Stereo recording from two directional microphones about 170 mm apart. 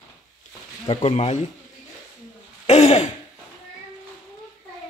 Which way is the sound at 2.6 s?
40° left (ahead or behind).